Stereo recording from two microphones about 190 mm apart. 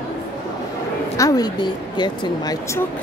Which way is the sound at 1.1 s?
20° left (ahead or behind).